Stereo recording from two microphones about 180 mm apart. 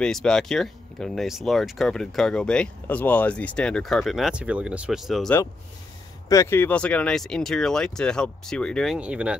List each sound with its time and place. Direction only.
0.0 s speech: 5° left (ahead or behind)
6.2 s speech: 15° left (ahead or behind); by 9.4 s 5° right (ahead or behind)